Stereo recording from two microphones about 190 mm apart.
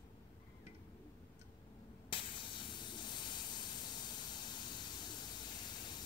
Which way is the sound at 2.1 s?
25° left (ahead or behind).